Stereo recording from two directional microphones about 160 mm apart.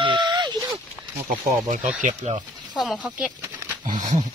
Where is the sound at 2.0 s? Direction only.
45° right (ahead or behind).